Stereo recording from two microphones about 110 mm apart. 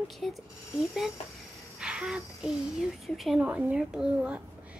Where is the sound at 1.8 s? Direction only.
10° right (ahead or behind).